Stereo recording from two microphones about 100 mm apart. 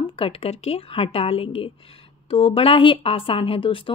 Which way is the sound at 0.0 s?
65° left (ahead or behind).